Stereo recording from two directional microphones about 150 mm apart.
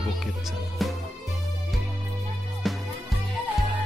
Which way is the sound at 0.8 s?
Centre (ahead or behind).